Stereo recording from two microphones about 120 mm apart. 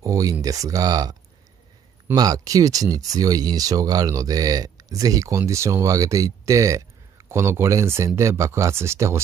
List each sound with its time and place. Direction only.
0.0 s speech: 30° right (ahead or behind)
2.1 s speech: 30° right (ahead or behind)